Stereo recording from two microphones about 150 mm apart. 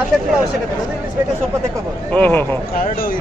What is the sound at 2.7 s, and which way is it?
Speech, 70° left (ahead or behind).